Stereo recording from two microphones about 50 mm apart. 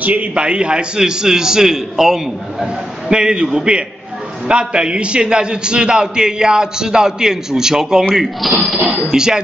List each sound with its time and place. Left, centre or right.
0.0 s a man's voice: right; by 8.0 s centre
8.4 s speech: centre
8.9 s a man's voice: centre